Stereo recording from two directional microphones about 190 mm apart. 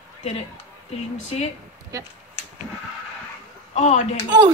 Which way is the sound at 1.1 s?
35° left (ahead or behind).